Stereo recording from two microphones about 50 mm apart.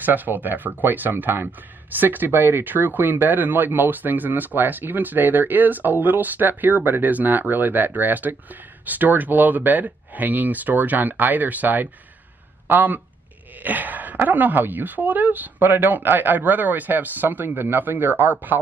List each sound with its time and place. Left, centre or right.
0.0 s speech: right
13.6 s a sound: right
14.1 s speech: right